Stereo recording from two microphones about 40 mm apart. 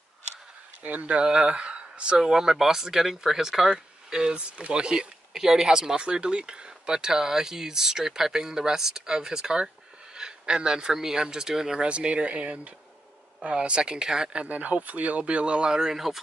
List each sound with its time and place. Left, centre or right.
0.8 s speech: right
5.3 s speech: centre
11.8 s speech: right
14.3 s speech: right
14.6 s speech: right; by 16.2 s centre